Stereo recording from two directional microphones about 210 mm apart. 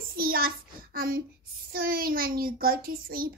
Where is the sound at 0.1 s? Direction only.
45° right (ahead or behind).